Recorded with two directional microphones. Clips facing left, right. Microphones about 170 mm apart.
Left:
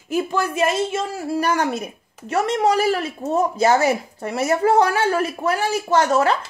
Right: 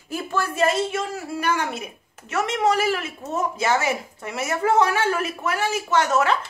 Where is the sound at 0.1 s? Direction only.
15° left (ahead or behind).